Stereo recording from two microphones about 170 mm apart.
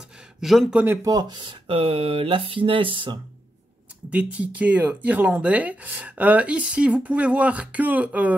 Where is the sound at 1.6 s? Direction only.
35° right (ahead or behind).